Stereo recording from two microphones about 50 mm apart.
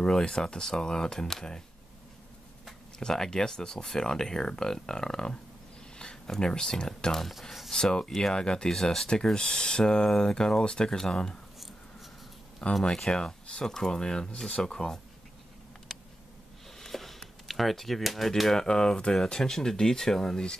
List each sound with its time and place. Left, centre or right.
0.0 s speech: centre
3.0 s speech: centre
12.8 s speech: centre
15.9 s a sound: centre
16.8 s speech: centre